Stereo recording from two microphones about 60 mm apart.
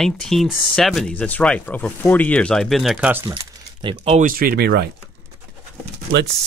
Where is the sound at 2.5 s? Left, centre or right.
Centre.